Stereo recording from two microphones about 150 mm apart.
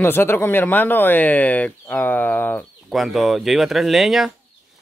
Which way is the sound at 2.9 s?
Centre (ahead or behind).